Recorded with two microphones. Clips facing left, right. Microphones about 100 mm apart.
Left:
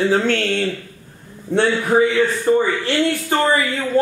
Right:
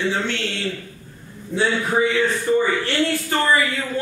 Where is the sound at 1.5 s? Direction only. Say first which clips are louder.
Left 5 dB; 70° left (ahead or behind).